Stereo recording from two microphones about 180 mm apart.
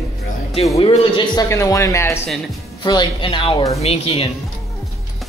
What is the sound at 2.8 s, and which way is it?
Speech, 25° left (ahead or behind).